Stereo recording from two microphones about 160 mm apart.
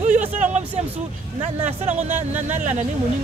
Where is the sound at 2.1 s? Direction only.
10° right (ahead or behind).